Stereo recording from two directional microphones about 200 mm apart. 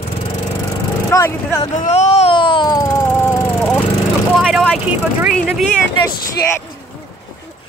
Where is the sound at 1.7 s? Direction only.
35° left (ahead or behind); by 3.0 s 20° left (ahead or behind).